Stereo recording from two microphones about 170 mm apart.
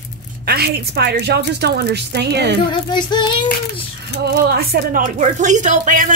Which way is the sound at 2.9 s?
25° left (ahead or behind).